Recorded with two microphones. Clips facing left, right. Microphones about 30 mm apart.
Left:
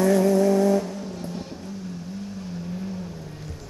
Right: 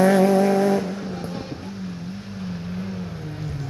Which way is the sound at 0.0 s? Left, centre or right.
Right.